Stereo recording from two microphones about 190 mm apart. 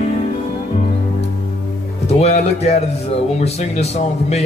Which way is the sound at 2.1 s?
35° left (ahead or behind).